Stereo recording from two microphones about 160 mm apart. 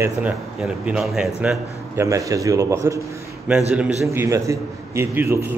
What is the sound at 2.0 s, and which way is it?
A man's voice, 20° right (ahead or behind).